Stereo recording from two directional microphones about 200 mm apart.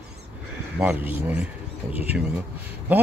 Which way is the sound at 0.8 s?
5° right (ahead or behind).